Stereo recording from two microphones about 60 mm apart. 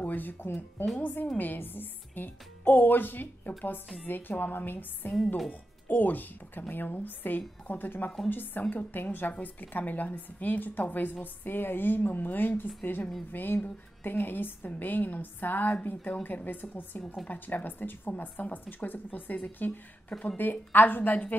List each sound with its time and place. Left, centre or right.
0.0 s a woman's voice: left